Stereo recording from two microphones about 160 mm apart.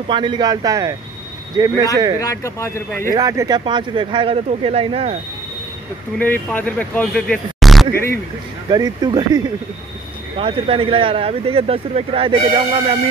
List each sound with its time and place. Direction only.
0.1 s speech: 30° right (ahead or behind)
2.1 s speech: 20° left (ahead or behind)
3.1 s speech: 20° right (ahead or behind); by 5.1 s 40° right (ahead or behind)
6.1 s speech: 10° left (ahead or behind)
8.6 s speech: 25° right (ahead or behind)